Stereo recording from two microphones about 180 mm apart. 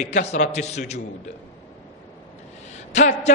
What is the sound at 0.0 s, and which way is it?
A man's voice, 40° left (ahead or behind).